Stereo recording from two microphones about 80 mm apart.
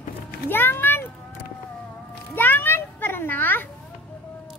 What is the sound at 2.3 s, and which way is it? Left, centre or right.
Music, left.